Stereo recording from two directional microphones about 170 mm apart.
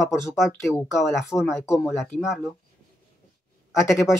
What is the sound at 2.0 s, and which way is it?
Speech, centre (ahead or behind).